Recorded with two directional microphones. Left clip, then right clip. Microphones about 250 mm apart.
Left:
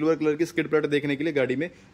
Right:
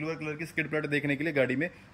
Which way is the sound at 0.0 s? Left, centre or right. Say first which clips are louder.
Left 12 dB; centre.